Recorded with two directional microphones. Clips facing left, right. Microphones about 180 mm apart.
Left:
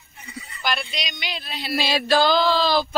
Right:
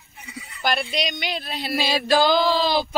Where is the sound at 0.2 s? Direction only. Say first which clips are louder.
Left 1 dB; 5° right (ahead or behind).